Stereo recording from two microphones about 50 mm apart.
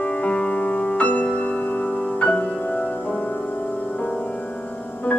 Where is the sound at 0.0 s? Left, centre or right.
Left.